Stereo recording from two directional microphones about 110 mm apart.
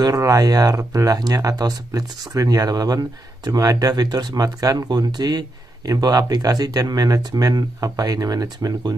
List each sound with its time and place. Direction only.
0.0 s speech: 30° right (ahead or behind)